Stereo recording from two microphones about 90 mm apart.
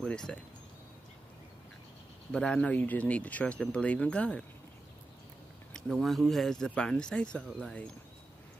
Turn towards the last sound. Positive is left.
turn(degrees=10)  # may be behind; listen again after turning